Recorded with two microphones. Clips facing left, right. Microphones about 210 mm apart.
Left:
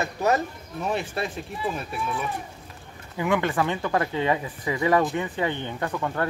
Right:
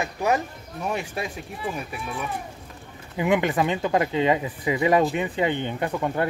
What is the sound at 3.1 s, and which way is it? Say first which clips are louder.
Speech: right 2 dB; 20° right (ahead or behind).